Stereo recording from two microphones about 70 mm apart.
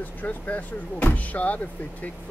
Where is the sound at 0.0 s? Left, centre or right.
Left.